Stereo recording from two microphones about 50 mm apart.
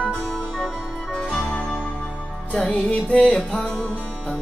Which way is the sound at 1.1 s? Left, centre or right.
Left.